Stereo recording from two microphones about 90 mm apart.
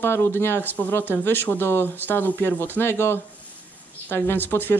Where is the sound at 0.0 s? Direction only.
25° left (ahead or behind).